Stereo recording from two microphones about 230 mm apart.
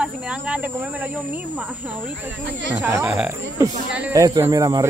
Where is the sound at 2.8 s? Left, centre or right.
Centre.